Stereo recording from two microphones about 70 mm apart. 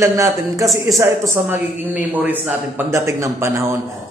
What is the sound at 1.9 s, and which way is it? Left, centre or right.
Speech, right.